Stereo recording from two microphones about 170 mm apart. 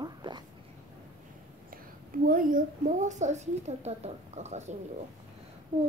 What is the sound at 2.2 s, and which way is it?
A woman's voice, 55° right (ahead or behind).